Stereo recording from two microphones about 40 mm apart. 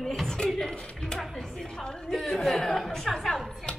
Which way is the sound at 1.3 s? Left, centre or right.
Centre.